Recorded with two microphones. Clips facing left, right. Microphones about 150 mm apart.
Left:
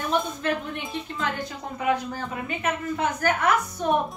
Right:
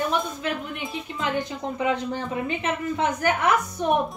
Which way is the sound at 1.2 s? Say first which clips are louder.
Right 5 dB; 20° right (ahead or behind).